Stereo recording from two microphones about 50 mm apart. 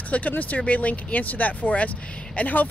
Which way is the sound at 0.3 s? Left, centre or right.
Left.